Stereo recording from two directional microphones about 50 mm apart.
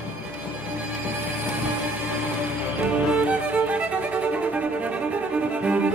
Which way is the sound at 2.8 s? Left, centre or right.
Right.